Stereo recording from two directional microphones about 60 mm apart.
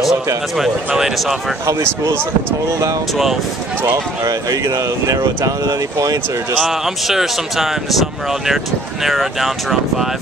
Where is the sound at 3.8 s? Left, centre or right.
Right.